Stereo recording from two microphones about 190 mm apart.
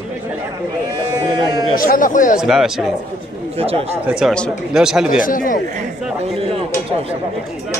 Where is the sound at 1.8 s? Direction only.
45° left (ahead or behind).